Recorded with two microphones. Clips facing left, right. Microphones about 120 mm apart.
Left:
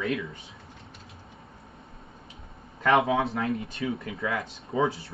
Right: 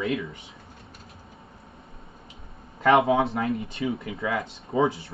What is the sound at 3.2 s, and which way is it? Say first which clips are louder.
Speech: right 3 dB; 25° right (ahead or behind).